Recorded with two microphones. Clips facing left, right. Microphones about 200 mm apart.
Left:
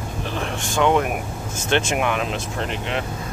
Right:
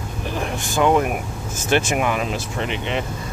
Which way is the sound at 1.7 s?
5° right (ahead or behind).